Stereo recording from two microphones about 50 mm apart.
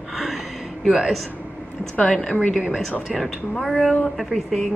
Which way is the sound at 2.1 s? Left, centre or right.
Centre.